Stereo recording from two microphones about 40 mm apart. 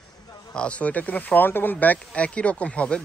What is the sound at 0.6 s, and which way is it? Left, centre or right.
Speech, left.